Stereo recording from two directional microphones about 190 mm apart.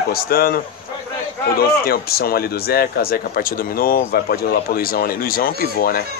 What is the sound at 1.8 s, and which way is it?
Speech, 55° left (ahead or behind).